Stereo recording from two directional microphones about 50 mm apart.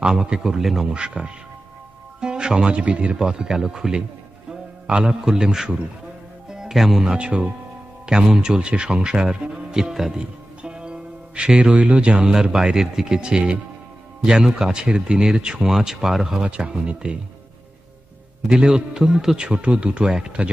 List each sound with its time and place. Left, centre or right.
0.0 s speech: centre
0.9 s a man's voice: right; by 7.2 s centre
7.2 s speech: centre
10.6 s a man's voice: centre
16.4 s speech: right
18.5 s speech: centre